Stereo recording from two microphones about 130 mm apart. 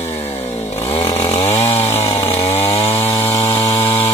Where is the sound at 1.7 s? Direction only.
25° left (ahead or behind).